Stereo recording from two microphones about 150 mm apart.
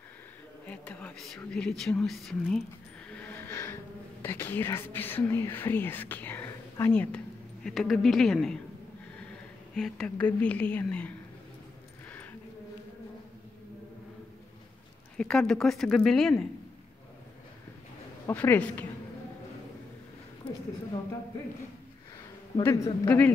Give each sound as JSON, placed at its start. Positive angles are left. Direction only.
{"t": 0.7, "sound": "speech", "side_deg": 10}
{"t": 3.1, "sound": "a sound", "side_deg": 10}
{"t": 4.2, "sound": "speech", "side_deg": 15}
{"t": 9.8, "sound": "a woman's voice", "side_deg": 5}
{"t": 15.1, "sound": "speech", "side_deg": 5}
{"t": 18.2, "sound": "a woman's voice", "side_deg": 10}
{"t": 22.6, "sound": "a woman's voice", "side_deg": 15}